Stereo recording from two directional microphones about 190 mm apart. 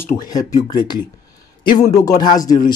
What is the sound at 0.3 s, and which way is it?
A man's voice, 20° left (ahead or behind).